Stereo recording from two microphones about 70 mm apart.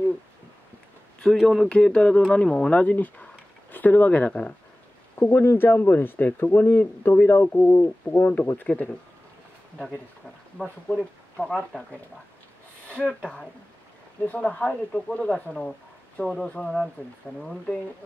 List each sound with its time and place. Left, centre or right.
1.4 s speech: centre
1.7 s speech: centre
2.8 s speech: left
5.2 s speech: left
10.6 s speech: centre
13.0 s speech: centre
14.2 s speech: left